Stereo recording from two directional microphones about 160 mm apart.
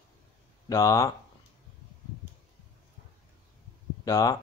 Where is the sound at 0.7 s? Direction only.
20° left (ahead or behind).